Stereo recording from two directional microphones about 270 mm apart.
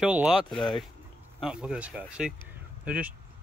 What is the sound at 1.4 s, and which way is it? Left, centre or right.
Speech, centre.